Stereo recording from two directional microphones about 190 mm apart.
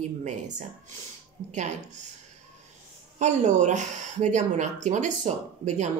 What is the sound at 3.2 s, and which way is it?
Speech, 40° right (ahead or behind).